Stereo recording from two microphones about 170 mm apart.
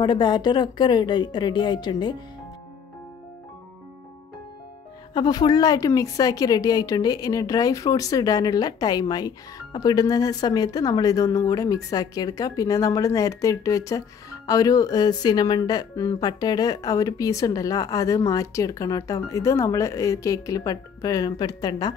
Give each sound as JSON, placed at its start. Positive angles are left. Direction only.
{"t": 0.0, "sound": "speech", "side_deg": 25}
{"t": 5.1, "sound": "speech", "side_deg": 25}